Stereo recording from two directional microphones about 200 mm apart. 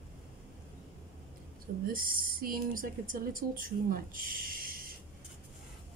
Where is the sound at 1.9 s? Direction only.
45° right (ahead or behind).